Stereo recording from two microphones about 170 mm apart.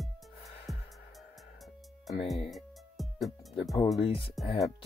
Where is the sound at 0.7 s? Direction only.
Centre (ahead or behind).